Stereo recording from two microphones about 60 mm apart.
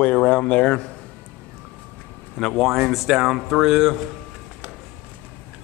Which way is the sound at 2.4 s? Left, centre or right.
Centre.